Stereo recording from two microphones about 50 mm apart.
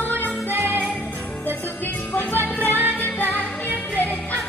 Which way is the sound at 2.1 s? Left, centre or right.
Left.